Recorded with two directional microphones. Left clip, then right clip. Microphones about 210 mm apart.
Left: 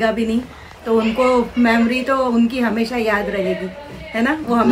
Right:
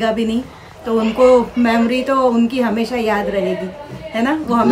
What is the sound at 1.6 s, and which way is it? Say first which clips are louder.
A man's voice: right 1 dB; 15° right (ahead or behind).